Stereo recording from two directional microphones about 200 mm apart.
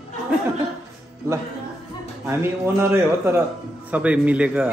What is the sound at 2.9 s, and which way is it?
A man's voice, 10° right (ahead or behind).